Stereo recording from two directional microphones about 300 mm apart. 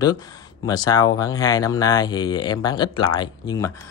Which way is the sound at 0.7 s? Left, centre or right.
Centre.